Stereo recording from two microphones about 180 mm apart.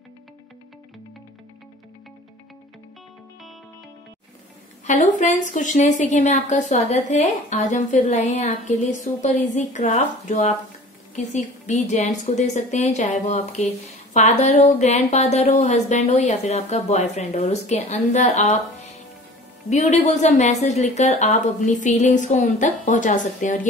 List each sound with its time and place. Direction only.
4.8 s a woman's voice: 45° left (ahead or behind)